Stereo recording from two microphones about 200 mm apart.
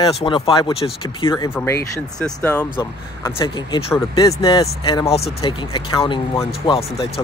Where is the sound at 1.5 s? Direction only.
10° left (ahead or behind).